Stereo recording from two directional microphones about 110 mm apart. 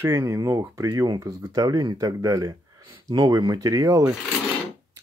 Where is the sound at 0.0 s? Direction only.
25° right (ahead or behind).